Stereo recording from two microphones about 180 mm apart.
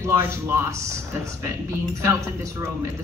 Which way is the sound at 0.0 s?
10° right (ahead or behind).